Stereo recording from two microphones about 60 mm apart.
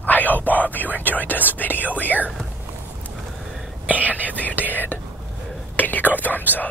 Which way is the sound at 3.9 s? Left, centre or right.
Right.